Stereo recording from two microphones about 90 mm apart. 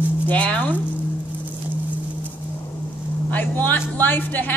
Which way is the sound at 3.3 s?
20° left (ahead or behind).